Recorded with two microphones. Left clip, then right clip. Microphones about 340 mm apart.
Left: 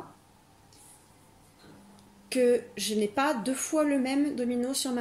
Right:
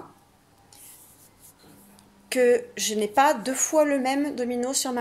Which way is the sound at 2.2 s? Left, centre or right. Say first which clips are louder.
Right 4 dB; centre.